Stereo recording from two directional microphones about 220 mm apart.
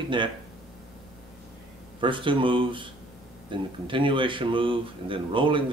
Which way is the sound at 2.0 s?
20° right (ahead or behind).